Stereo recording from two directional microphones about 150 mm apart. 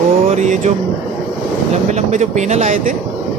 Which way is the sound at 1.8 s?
50° right (ahead or behind).